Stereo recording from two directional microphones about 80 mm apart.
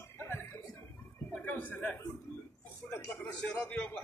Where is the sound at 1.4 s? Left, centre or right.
Left.